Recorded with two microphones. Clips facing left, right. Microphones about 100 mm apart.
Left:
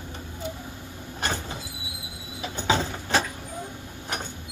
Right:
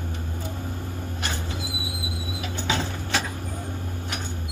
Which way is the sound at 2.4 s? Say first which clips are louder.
Left 3 dB; 35° left (ahead or behind).